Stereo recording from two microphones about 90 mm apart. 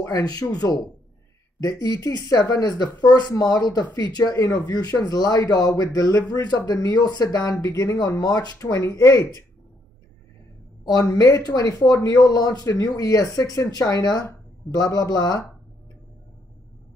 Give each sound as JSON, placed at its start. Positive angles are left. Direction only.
{"t": 0.0, "sound": "speech", "side_deg": 45}
{"t": 11.1, "sound": "speech", "side_deg": 40}